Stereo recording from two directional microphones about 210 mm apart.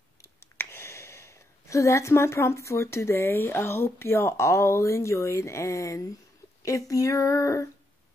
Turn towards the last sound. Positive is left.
turn(degrees=15)  # may be behind; listen again after turning